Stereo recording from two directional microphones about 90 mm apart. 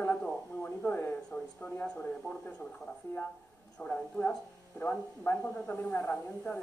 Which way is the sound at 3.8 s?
15° left (ahead or behind).